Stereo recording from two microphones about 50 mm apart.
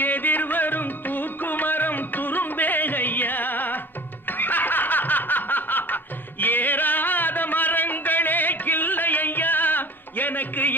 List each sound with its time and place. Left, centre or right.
0.0 s music: left
4.3 s snicker: left
6.4 s music: left